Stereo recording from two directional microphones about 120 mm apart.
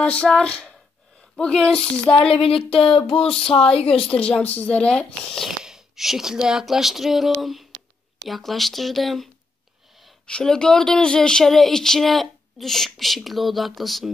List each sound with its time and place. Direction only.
0.0 s speech: 5° left (ahead or behind)
2.2 s speech: 50° left (ahead or behind)
3.5 s a woman's voice: 30° left (ahead or behind)
4.2 s a woman's voice: 10° left (ahead or behind)